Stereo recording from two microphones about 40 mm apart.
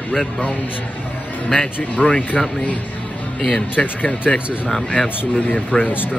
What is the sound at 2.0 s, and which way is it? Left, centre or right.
Speech, left.